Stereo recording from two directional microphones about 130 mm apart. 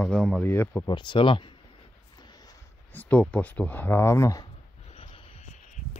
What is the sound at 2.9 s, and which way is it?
Speech, 10° left (ahead or behind).